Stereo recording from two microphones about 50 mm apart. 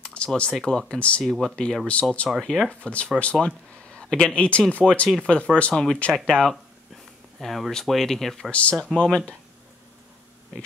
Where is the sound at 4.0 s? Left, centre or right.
Centre.